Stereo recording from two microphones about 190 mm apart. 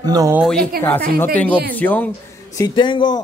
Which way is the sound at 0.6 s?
55° right (ahead or behind).